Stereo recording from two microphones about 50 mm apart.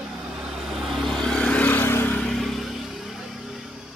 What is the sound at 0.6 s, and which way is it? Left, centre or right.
Vehicle, centre.